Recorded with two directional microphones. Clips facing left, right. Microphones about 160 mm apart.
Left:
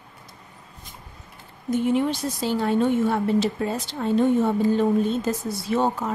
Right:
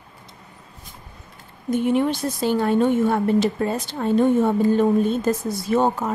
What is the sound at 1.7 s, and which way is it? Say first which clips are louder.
A woman's voice: right 2 dB; 55° right (ahead or behind).